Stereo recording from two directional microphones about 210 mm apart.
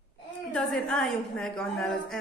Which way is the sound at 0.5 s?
5° left (ahead or behind).